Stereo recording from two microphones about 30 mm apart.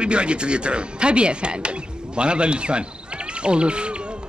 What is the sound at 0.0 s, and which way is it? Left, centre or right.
Speech, right.